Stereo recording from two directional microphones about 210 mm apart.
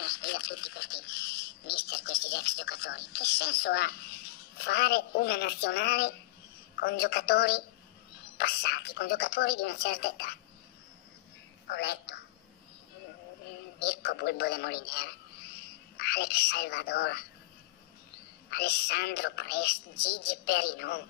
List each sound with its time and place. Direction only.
0.0 s a woman's voice: 50° left (ahead or behind)
11.7 s a woman's voice: 55° left (ahead or behind)
13.7 s a woman's voice: 50° left (ahead or behind)
18.5 s a woman's voice: 50° left (ahead or behind)